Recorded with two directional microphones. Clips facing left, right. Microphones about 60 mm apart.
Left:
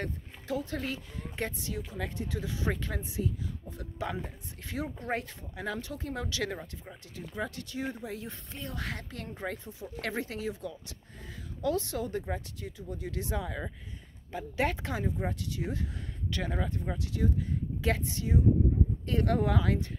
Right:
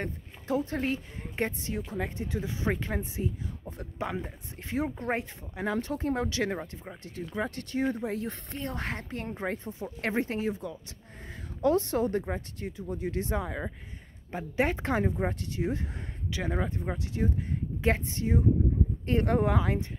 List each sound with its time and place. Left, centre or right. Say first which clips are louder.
0.0 s speech: right 1 dB; right
5.8 s speech: right 7 dB; right
14.8 s speech: right 5 dB; right
16.3 s speech: right 2 dB; centre
16.5 s speech: right 2 dB; right